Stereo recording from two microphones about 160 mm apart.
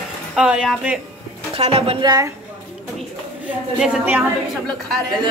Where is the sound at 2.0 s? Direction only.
20° right (ahead or behind).